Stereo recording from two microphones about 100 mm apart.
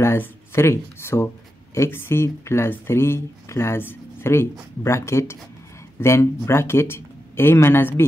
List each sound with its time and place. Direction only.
0.0 s speech: 25° left (ahead or behind)